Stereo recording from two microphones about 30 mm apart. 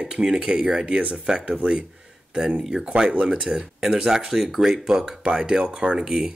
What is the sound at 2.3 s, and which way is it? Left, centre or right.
Speech, right.